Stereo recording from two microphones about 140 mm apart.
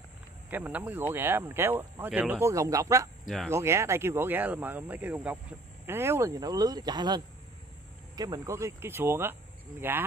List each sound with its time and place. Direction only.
0.5 s speech: 10° right (ahead or behind)
2.5 s speech: 20° right (ahead or behind)